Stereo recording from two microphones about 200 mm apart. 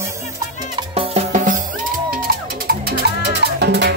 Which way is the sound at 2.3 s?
45° right (ahead or behind).